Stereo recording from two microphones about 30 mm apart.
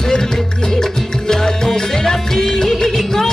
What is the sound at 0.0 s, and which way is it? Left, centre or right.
Music, centre.